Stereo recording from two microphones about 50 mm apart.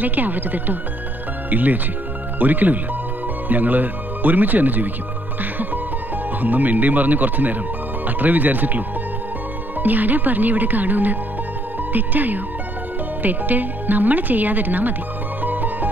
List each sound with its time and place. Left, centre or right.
0.0 s speech: right
6.4 s speech: right
15.4 s music: right